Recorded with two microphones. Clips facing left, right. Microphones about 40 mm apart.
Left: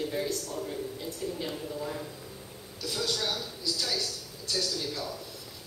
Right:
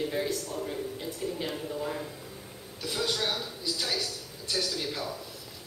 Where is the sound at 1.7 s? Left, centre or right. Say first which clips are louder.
Right 2 dB; right.